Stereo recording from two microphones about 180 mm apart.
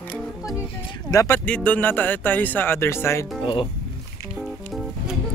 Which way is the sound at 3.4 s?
30° left (ahead or behind).